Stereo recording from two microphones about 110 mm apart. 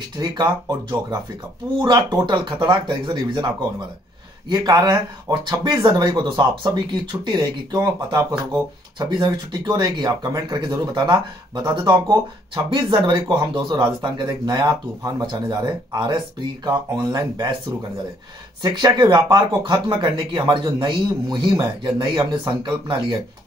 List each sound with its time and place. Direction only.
0.2 s speech: 40° right (ahead or behind)
18.6 s speech: 40° right (ahead or behind)